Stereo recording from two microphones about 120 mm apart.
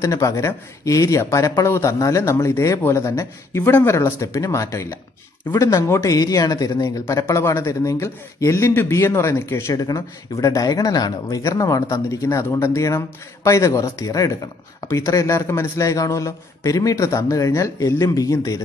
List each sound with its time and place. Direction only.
0.0 s speech: 25° left (ahead or behind)